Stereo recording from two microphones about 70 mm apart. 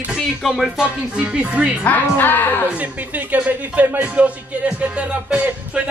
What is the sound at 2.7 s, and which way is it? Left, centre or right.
Speech, right.